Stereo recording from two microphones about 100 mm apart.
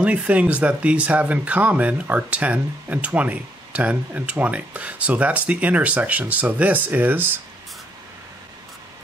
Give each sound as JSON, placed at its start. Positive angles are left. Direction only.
{"t": 0.0, "sound": "speech", "side_deg": -15}